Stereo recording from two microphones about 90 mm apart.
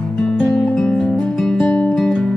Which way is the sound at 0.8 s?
5° left (ahead or behind).